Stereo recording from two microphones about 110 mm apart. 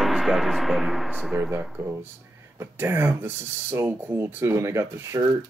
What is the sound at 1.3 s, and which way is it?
Speech, 15° right (ahead or behind).